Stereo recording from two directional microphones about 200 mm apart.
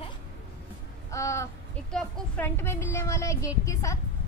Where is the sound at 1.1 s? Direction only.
15° left (ahead or behind).